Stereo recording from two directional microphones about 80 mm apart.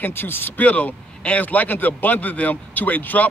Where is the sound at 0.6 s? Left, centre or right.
Centre.